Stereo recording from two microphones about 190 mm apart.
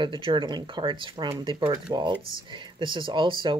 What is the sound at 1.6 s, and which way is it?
Speech, 10° right (ahead or behind).